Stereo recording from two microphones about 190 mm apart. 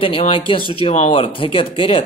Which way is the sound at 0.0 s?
30° left (ahead or behind).